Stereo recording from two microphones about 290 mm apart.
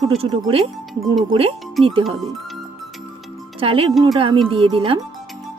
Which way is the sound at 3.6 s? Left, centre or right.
Centre.